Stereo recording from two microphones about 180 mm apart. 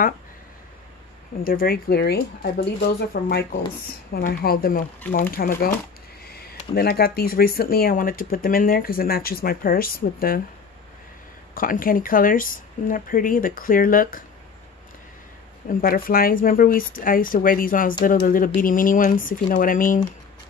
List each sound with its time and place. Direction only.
1.4 s speech: 55° left (ahead or behind)
6.7 s speech: 60° left (ahead or behind)
11.5 s speech: 50° left (ahead or behind)
15.8 s speech: 55° left (ahead or behind)